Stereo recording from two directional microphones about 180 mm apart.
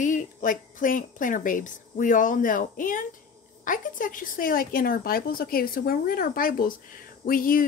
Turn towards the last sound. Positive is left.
turn(degrees=50)  # may be behind; listen again after turning